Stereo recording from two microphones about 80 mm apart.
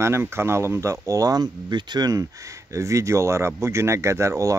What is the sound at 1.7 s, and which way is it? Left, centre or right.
Speech, right.